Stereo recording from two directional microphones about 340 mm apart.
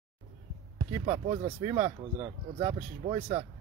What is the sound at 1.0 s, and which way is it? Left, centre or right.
Speech, centre.